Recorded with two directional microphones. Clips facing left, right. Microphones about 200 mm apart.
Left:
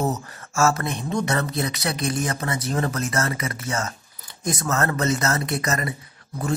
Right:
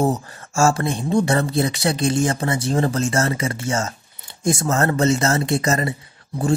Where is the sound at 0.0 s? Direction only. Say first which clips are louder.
Right 5 dB; 30° right (ahead or behind).